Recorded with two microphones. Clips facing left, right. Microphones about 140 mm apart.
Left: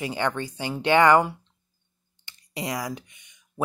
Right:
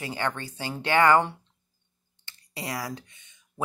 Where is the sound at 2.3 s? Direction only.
20° left (ahead or behind).